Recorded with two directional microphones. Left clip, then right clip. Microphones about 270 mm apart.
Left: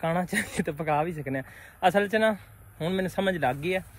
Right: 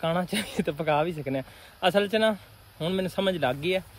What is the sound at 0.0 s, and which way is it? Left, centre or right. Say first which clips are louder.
Speech: even; centre.